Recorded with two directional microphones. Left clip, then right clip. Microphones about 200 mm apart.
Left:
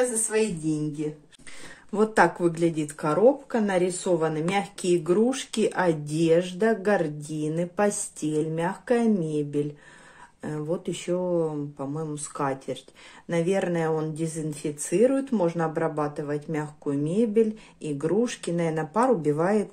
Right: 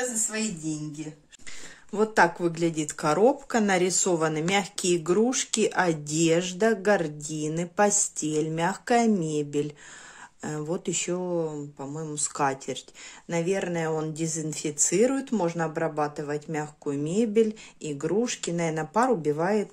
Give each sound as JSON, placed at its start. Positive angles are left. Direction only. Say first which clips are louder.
{"t": 0.3, "sound": "a woman's voice", "louder": "left 7 dB", "side_deg": 0}
{"t": 12.1, "sound": "speech", "louder": "right 5 dB", "side_deg": -20}
{"t": 13.3, "sound": "speech", "louder": "left 2 dB", "side_deg": -10}